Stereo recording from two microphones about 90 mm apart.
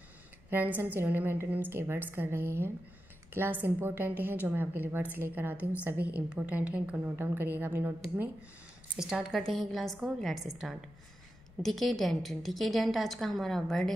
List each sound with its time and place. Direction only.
0.5 s a woman's voice: 20° right (ahead or behind)
8.9 s a woman's voice: 10° right (ahead or behind)
9.4 s a woman's voice: 5° left (ahead or behind)